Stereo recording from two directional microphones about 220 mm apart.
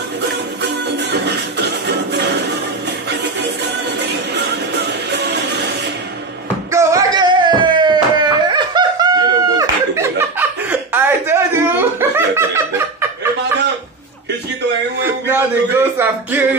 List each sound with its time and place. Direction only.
0.6 s music: 50° right (ahead or behind)
4.4 s music: 50° right (ahead or behind)
6.7 s a sound: 15° right (ahead or behind)
15.0 s music: 10° right (ahead or behind)